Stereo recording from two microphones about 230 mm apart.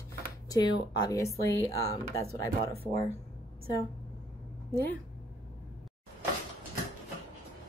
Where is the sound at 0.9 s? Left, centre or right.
Centre.